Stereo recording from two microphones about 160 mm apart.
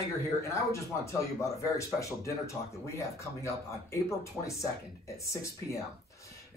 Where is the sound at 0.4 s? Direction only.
20° left (ahead or behind).